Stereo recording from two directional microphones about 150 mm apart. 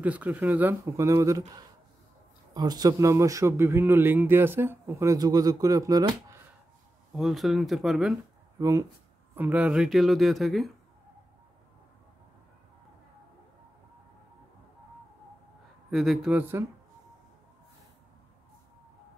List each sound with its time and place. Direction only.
0.0 s speech: 10° right (ahead or behind)
2.5 s speech: 25° right (ahead or behind)
7.2 s speech: centre (ahead or behind)
8.5 s speech: 20° right (ahead or behind)
9.3 s speech: 10° right (ahead or behind)
15.9 s speech: centre (ahead or behind)